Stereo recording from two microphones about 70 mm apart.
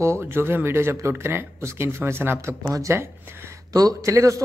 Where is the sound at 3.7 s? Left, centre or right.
Right.